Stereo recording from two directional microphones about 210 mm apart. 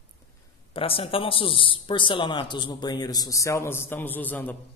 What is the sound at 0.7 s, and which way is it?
A man's voice, 25° left (ahead or behind).